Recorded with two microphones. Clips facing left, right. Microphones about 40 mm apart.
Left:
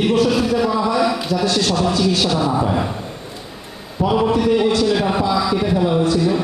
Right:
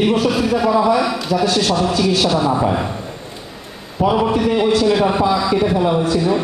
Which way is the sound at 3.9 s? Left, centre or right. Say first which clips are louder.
Right 1 dB; centre.